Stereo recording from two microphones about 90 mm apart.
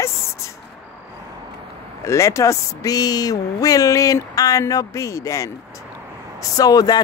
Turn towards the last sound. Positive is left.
turn(degrees=45)  # may be behind; listen again after turning